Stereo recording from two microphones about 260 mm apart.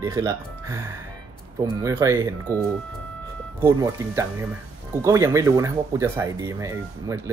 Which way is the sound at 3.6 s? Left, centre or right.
Centre.